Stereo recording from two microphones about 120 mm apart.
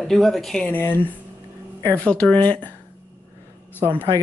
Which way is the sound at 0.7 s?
15° left (ahead or behind).